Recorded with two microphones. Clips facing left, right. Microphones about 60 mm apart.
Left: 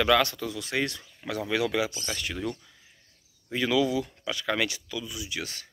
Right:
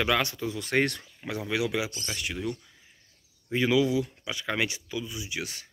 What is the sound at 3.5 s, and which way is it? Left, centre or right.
Speech, centre.